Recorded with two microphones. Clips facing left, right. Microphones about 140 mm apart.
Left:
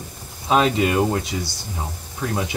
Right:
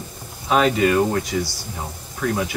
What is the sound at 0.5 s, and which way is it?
Speech, 20° left (ahead or behind).